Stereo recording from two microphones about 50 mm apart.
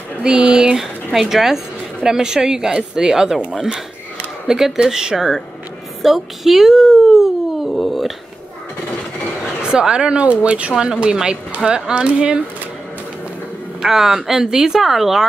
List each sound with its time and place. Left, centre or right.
0.2 s a woman's voice: right
4.5 s a woman's voice: centre
7.7 s a sound: centre
9.6 s a woman's voice: centre
13.7 s a woman's voice: centre